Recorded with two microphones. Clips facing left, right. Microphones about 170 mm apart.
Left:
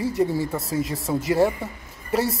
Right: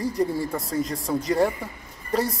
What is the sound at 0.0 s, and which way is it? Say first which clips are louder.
Speech: left 2 dB; 5° left (ahead or behind).